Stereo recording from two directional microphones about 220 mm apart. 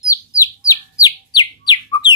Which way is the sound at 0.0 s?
15° left (ahead or behind).